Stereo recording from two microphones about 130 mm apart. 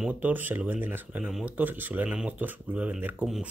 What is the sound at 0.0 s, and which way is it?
Speech, 10° right (ahead or behind).